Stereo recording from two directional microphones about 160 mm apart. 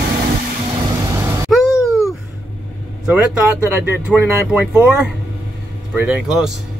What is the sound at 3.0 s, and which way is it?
Speech, 5° right (ahead or behind).